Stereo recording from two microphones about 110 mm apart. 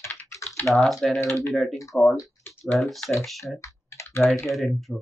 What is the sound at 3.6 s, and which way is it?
Computer keyboard, 25° left (ahead or behind).